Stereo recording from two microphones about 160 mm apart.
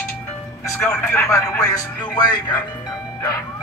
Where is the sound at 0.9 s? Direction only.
10° left (ahead or behind).